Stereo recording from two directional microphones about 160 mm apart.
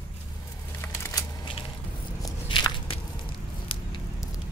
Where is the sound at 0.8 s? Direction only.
20° left (ahead or behind).